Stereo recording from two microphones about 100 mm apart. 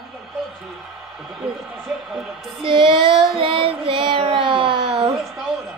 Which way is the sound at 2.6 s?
55° right (ahead or behind).